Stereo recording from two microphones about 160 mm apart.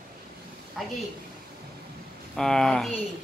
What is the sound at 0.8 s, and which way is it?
Speech, centre (ahead or behind).